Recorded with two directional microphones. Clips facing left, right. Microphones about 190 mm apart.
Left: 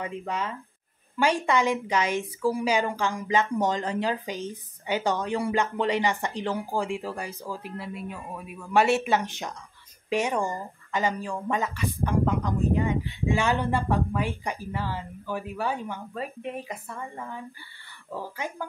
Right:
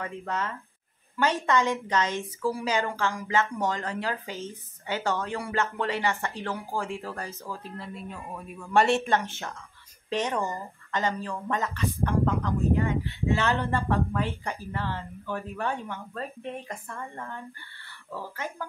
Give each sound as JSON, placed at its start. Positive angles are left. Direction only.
{"t": 0.0, "sound": "speech", "side_deg": 15}